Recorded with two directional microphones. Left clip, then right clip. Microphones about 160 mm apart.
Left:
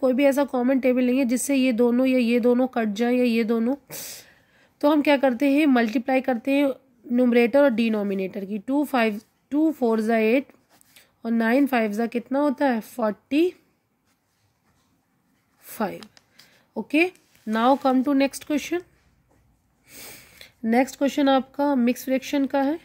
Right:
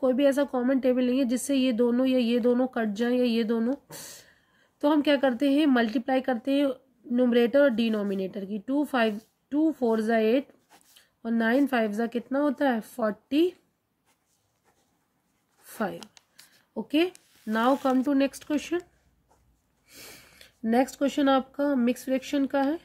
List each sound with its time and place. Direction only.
0.0 s speech: 25° left (ahead or behind)
15.6 s a sound: 25° left (ahead or behind)
16.7 s speech: 25° left (ahead or behind)
19.9 s speech: 20° left (ahead or behind)